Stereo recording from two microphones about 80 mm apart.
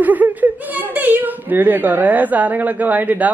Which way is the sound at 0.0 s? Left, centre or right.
Right.